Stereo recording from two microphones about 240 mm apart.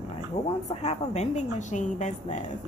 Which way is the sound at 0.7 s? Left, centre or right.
Left.